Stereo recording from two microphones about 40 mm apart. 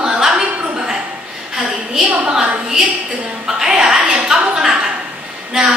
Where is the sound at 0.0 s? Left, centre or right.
Centre.